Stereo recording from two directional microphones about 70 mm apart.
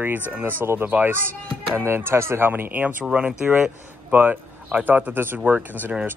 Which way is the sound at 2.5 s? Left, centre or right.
Right.